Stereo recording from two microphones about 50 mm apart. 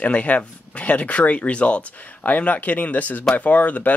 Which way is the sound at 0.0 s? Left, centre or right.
Left.